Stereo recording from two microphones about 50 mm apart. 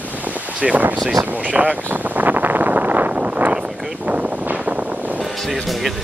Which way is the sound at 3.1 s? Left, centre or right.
Right.